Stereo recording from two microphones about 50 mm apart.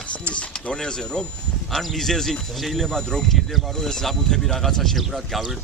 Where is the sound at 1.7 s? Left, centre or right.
Centre.